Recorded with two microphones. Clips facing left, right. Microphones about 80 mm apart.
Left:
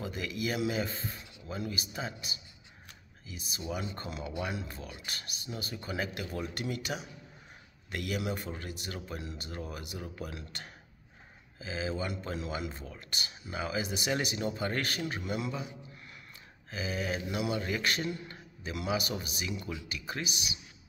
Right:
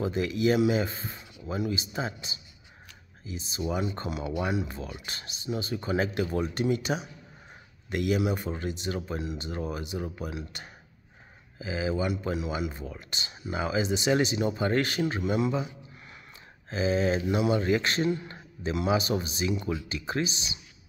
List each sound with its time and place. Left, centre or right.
0.0 s speech: right
16.7 s speech: right